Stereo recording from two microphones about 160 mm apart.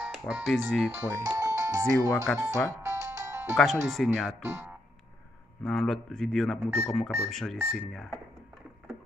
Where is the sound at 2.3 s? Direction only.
10° left (ahead or behind).